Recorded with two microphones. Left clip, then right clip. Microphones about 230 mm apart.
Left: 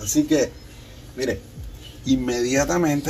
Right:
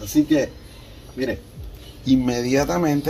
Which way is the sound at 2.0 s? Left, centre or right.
Right.